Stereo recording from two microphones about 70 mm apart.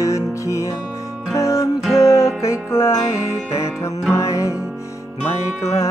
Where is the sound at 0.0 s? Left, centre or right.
Left.